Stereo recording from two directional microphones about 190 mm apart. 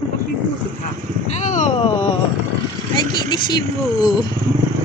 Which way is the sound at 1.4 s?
40° left (ahead or behind).